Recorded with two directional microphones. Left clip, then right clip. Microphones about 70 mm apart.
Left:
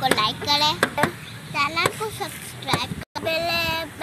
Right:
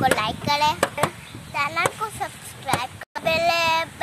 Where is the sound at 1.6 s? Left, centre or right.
Centre.